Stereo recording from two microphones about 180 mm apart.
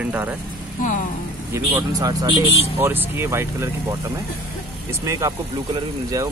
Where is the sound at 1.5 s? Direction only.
15° right (ahead or behind).